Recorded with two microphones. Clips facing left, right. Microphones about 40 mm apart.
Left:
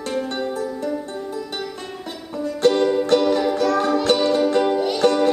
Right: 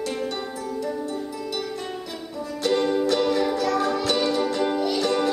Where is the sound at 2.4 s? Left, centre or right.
Left.